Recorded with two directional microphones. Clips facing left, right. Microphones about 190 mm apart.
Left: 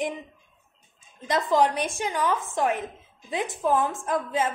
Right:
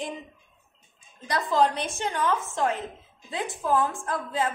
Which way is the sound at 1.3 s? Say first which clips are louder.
Left 2 dB; 15° left (ahead or behind).